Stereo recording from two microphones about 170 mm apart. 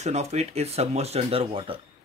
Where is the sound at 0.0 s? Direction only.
40° right (ahead or behind).